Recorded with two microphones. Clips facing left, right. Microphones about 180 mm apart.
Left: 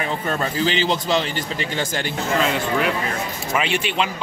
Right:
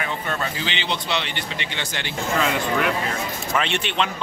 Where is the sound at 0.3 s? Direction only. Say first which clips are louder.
Left 6 dB; 40° left (ahead or behind).